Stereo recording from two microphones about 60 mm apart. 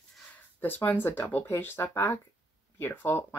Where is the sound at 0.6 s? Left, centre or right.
Left.